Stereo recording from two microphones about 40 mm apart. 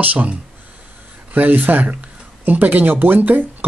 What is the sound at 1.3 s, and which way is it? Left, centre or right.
Speech, right.